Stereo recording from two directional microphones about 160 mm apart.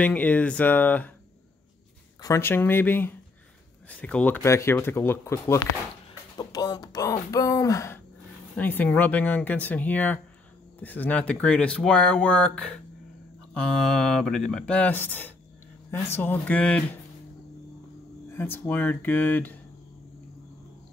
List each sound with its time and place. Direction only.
0.0 s speech: 10° left (ahead or behind)
2.2 s speech: 15° left (ahead or behind)
6.3 s a sound: 25° left (ahead or behind)
8.5 s speech: 10° left (ahead or behind)
18.3 s speech: 15° left (ahead or behind)